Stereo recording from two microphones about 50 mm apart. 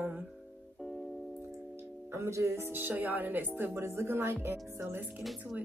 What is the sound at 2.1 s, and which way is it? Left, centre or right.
Speech, right.